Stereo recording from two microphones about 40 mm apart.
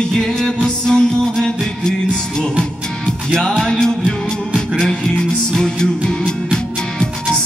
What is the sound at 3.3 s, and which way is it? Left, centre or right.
Music, centre.